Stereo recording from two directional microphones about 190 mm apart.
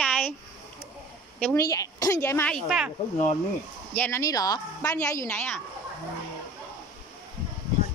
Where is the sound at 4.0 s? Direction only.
15° left (ahead or behind).